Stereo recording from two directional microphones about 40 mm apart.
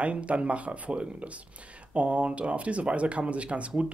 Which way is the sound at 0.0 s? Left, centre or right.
Right.